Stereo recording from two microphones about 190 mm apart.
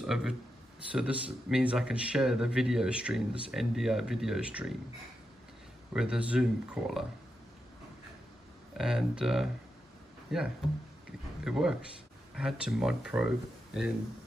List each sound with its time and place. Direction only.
0.0 s speech: centre (ahead or behind)
5.9 s speech: 5° right (ahead or behind)
8.7 s speech: 5° right (ahead or behind)